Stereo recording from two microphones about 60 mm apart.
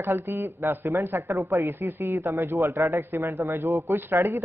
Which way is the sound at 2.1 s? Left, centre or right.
Right.